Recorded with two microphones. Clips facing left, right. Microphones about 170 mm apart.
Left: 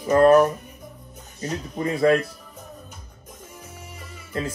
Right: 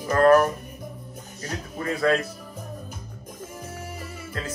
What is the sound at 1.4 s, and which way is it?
Speech, 20° left (ahead or behind).